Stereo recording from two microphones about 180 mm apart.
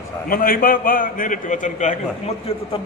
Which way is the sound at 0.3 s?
50° left (ahead or behind).